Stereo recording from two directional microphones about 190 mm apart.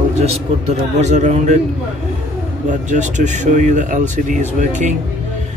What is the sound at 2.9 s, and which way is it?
Speech, 40° right (ahead or behind).